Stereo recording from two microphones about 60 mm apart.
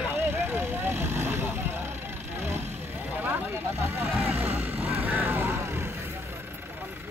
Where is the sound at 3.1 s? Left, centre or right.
Right.